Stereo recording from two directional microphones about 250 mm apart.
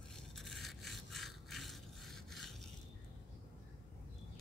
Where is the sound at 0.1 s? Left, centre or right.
Centre.